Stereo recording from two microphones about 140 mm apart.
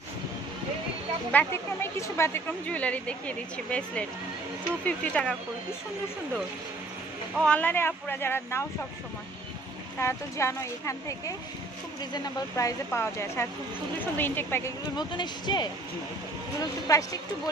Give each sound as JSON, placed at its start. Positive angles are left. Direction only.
{"t": 1.3, "sound": "speech", "side_deg": 15}
{"t": 7.4, "sound": "speech", "side_deg": 10}
{"t": 9.9, "sound": "speech", "side_deg": 20}
{"t": 15.0, "sound": "speech", "side_deg": 30}
{"t": 16.8, "sound": "speech", "side_deg": 25}